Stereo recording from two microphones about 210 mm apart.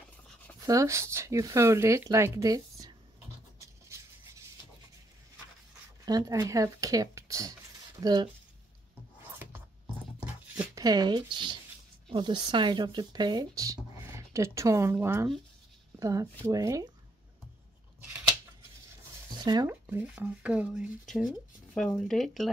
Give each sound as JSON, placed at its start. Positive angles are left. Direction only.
{"t": 0.7, "sound": "speech", "side_deg": -15}
{"t": 6.0, "sound": "speech", "side_deg": -20}
{"t": 10.6, "sound": "speech", "side_deg": -15}
{"t": 19.3, "sound": "speech", "side_deg": -20}
{"t": 19.9, "sound": "speech", "side_deg": -5}